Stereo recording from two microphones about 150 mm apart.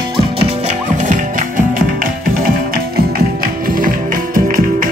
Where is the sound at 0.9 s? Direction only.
60° right (ahead or behind).